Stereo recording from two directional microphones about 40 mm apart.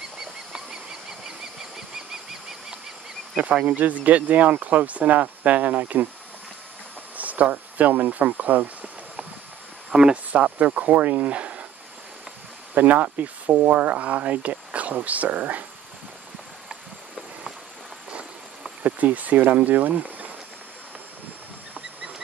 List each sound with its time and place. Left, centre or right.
3.3 s speech: right
3.6 s speech: right
7.2 s a sound: right
9.9 s speech: right
12.7 s speech: right
18.8 s speech: right